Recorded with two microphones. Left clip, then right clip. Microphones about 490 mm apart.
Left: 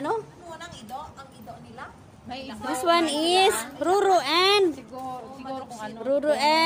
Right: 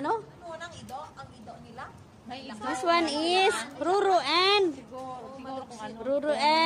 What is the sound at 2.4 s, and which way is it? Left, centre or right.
A woman's voice, right.